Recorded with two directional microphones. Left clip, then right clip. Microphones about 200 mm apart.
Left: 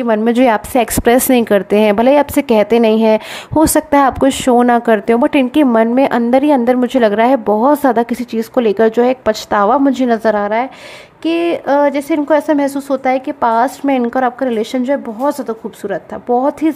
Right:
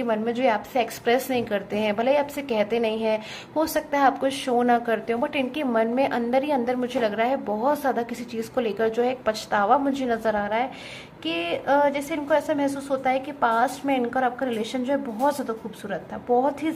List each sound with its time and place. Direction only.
0.0 s a woman's voice: 55° left (ahead or behind)